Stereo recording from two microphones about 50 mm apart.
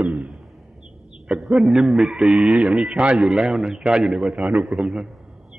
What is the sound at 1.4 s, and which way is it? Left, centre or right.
Chicken, centre.